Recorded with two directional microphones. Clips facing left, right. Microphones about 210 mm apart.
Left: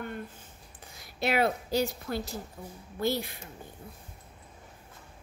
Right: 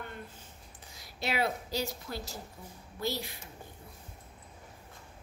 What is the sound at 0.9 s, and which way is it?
A woman's voice, 55° left (ahead or behind).